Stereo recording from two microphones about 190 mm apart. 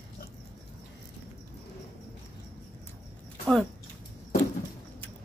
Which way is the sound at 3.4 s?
Centre (ahead or behind).